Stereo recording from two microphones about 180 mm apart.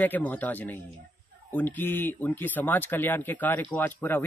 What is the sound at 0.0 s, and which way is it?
Speech, 10° left (ahead or behind).